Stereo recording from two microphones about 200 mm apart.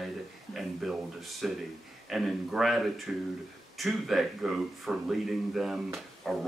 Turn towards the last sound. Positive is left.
turn(degrees=0)  # may be behind; listen again after turning